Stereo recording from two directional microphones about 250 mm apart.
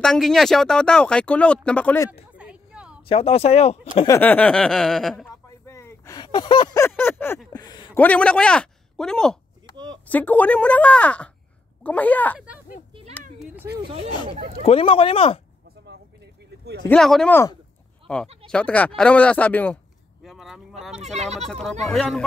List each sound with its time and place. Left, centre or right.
0.0 s speech: centre
2.3 s a sound: centre
3.1 s speech: left
4.1 s speech: centre
5.7 s a sound: centre
8.0 s speech: centre
13.4 s a sound: centre
14.6 s speech: left
16.9 s speech: centre
20.2 s vehicle: centre
21.0 s speech: right
21.5 s speech: centre